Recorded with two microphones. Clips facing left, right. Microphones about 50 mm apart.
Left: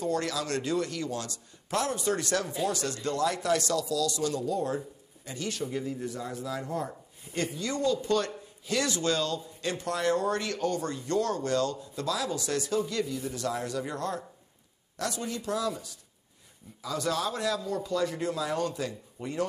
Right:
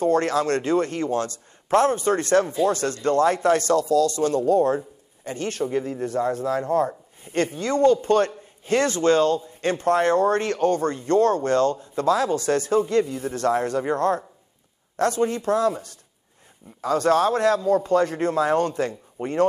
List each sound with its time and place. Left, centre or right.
0.0 s speech: right